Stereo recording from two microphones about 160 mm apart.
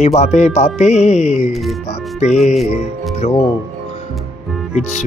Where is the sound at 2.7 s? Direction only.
40° left (ahead or behind).